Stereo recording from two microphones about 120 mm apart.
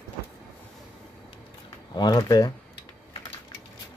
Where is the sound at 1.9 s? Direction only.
35° left (ahead or behind).